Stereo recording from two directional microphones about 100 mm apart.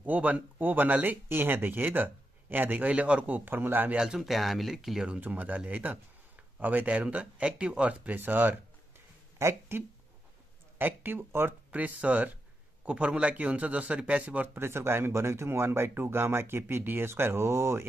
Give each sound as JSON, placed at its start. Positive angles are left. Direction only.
{"t": 0.0, "sound": "a man's voice", "side_deg": -15}
{"t": 4.0, "sound": "a man's voice", "side_deg": -5}